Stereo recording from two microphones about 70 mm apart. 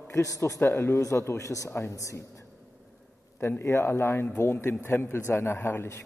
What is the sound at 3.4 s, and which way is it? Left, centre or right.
A man's voice, left.